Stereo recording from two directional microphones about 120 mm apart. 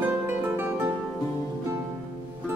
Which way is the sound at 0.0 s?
20° right (ahead or behind).